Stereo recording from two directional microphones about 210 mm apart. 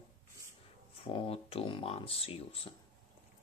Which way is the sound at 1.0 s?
25° left (ahead or behind).